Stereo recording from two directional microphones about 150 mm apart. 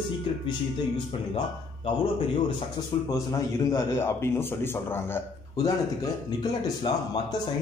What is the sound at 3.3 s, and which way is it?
A man's voice, 20° left (ahead or behind).